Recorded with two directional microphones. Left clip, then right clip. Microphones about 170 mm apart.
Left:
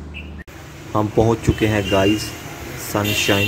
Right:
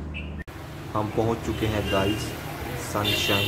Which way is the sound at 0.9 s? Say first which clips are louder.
Left 8 dB; 45° left (ahead or behind).